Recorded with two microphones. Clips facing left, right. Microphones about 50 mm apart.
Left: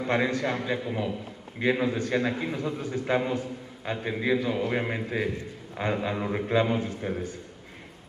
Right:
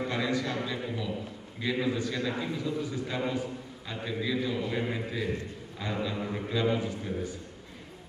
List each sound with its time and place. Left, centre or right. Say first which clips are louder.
0.1 s a man's voice: left 9 dB; left
1.6 s a man's voice: left 4 dB; left